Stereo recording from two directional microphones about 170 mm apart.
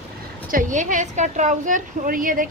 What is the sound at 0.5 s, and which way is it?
A woman's voice, 50° right (ahead or behind).